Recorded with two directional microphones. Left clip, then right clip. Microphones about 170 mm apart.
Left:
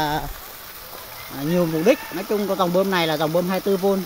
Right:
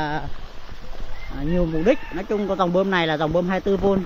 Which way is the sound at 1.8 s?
15° left (ahead or behind).